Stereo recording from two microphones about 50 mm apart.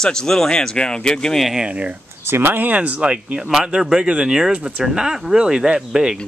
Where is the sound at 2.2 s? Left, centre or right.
Right.